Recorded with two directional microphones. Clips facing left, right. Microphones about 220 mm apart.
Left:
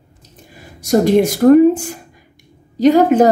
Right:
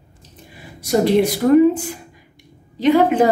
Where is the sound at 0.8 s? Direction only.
45° left (ahead or behind).